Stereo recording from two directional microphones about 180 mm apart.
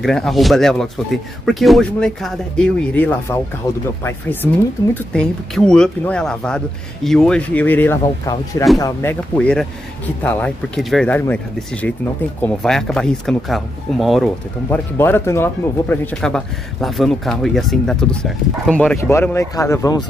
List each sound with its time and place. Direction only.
0.0 s speech: centre (ahead or behind)
12.4 s speech: 5° left (ahead or behind)
14.7 s speech: 10° left (ahead or behind)
16.2 s speech: 5° left (ahead or behind); by 20.1 s 20° left (ahead or behind)